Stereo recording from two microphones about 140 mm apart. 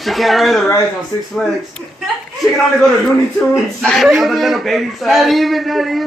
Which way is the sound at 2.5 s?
Centre (ahead or behind).